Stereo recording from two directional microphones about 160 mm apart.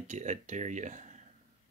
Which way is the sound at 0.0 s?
50° right (ahead or behind).